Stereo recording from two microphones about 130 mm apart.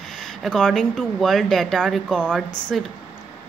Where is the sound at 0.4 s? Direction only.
5° left (ahead or behind).